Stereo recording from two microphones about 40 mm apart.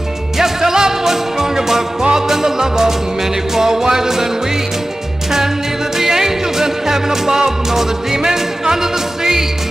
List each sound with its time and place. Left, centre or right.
0.4 s music: centre
5.9 s music: centre